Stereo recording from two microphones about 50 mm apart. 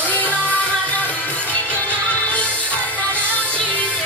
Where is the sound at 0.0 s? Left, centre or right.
Left.